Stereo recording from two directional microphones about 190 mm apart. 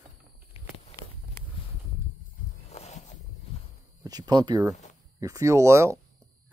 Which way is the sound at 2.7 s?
35° left (ahead or behind).